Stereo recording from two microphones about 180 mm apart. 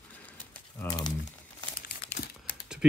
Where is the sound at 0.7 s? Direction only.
20° left (ahead or behind).